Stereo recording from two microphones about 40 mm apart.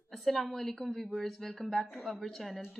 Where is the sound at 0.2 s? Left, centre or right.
Centre.